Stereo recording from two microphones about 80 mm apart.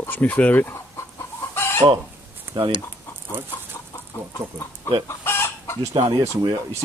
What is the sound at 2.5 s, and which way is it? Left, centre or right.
Speech, right.